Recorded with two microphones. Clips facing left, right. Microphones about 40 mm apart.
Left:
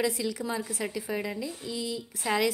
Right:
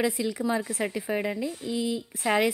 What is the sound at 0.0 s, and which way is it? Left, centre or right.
A woman's voice, right.